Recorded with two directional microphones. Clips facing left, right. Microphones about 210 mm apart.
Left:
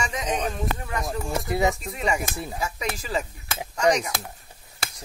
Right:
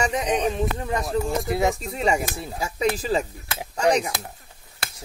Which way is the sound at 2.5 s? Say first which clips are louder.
Right 3 dB; 25° right (ahead or behind).